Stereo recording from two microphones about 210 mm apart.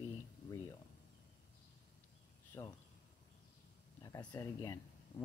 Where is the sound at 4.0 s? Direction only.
15° left (ahead or behind).